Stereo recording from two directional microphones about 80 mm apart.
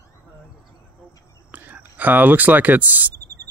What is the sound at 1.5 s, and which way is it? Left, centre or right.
Speech, right.